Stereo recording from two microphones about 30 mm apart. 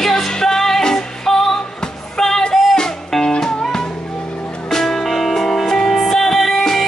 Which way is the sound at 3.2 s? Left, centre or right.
Centre.